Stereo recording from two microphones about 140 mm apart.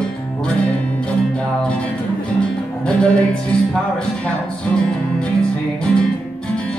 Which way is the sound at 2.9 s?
5° left (ahead or behind).